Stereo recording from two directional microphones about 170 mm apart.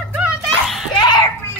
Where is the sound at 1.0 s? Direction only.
25° left (ahead or behind).